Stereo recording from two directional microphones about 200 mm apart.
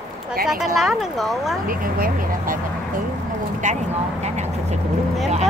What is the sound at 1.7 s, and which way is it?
Speech, 45° right (ahead or behind).